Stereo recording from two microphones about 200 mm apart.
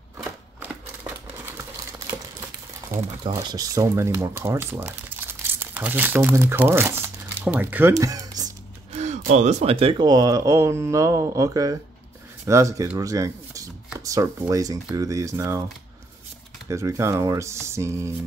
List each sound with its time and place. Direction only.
0.2 s a sound: 5° right (ahead or behind)
2.9 s speech: 20° right (ahead or behind)
8.9 s speech: 35° right (ahead or behind); by 15.6 s 15° right (ahead or behind)
16.6 s speech: 15° right (ahead or behind)